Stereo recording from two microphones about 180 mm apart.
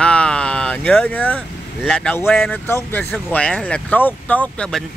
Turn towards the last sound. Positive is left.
turn(degrees=5)  # may be behind; listen again after turning